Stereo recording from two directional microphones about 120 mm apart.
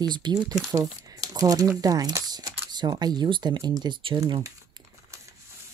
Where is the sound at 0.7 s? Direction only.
30° right (ahead or behind); by 4.2 s 45° right (ahead or behind).